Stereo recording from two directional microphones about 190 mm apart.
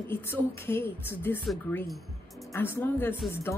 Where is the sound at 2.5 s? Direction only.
15° left (ahead or behind).